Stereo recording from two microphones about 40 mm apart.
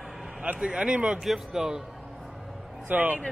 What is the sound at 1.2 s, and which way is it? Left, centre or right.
Speech, centre.